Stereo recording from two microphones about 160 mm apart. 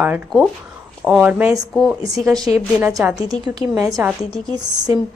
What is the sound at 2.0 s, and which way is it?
A woman's voice, 20° right (ahead or behind).